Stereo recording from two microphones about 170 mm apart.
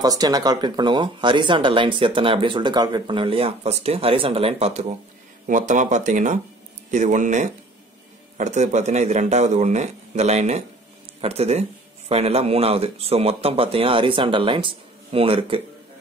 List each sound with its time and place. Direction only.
0.0 s a man's voice: 20° right (ahead or behind)